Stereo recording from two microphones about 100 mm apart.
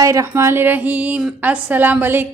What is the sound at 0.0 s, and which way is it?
A woman's voice, 35° right (ahead or behind).